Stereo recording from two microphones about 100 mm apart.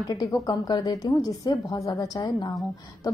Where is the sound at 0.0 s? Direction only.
35° left (ahead or behind).